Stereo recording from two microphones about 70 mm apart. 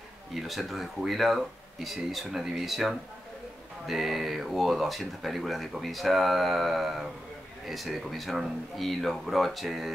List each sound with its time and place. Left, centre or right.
0.3 s speech: centre